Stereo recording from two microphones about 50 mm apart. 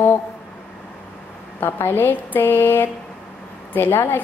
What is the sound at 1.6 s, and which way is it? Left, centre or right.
Speech, left.